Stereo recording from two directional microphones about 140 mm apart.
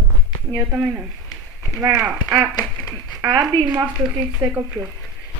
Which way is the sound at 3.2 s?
30° right (ahead or behind).